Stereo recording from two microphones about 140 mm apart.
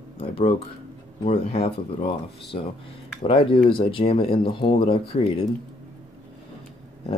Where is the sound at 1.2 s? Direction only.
45° left (ahead or behind).